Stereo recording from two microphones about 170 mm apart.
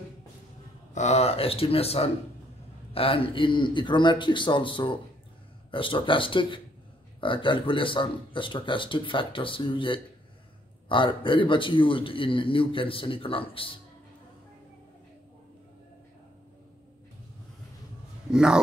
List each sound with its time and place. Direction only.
0.9 s a man's voice: 40° left (ahead or behind)
18.3 s a man's voice: 5° right (ahead or behind)